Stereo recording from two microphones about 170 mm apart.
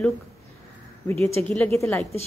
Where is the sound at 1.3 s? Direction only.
10° left (ahead or behind).